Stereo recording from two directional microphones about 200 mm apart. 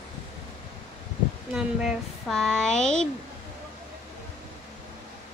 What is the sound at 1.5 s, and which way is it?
A woman's voice, centre (ahead or behind).